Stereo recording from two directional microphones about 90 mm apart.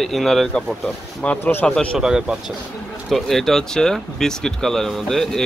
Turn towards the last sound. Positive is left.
turn(degrees=5)  # may be behind; listen again after turning